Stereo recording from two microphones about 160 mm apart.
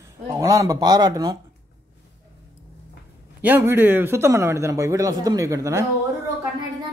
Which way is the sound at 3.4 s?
10° right (ahead or behind).